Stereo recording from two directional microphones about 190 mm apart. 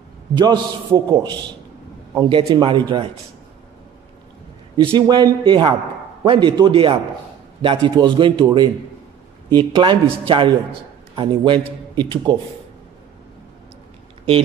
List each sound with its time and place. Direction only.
0.4 s a man's voice: 20° right (ahead or behind)
4.7 s a man's voice: 20° right (ahead or behind)